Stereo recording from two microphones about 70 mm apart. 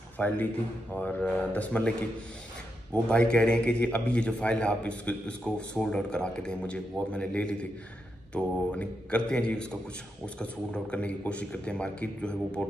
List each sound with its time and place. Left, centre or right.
0.2 s a man's voice: left